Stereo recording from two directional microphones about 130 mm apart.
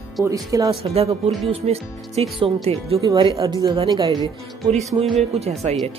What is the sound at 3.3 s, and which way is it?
Speech, 30° right (ahead or behind).